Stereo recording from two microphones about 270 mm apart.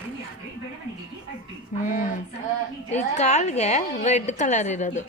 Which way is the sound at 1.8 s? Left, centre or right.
Left.